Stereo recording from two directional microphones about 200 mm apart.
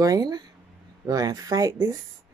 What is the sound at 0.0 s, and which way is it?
Speech, 20° right (ahead or behind).